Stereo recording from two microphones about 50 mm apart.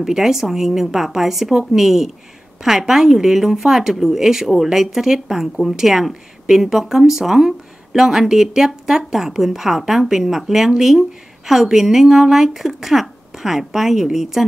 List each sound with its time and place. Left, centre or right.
0.0 s a woman's voice: centre